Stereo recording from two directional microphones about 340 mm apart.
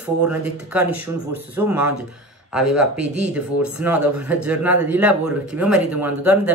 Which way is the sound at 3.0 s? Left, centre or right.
Right.